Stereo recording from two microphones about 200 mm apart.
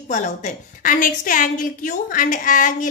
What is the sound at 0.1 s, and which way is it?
A woman's voice, 40° left (ahead or behind).